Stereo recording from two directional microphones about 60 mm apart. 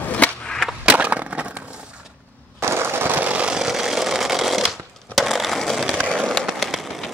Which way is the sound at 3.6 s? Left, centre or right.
Centre.